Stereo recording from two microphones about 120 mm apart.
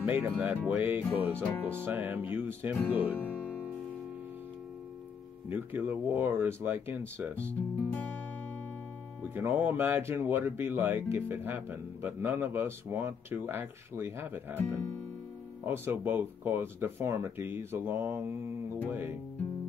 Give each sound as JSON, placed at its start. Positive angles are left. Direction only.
{"t": 0.0, "sound": "speech", "side_deg": -15}
{"t": 3.2, "sound": "music", "side_deg": 15}
{"t": 5.5, "sound": "speech", "side_deg": -15}
{"t": 9.2, "sound": "speech", "side_deg": -15}